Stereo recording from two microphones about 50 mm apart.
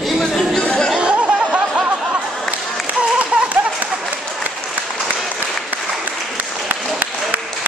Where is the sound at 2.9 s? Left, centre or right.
Right.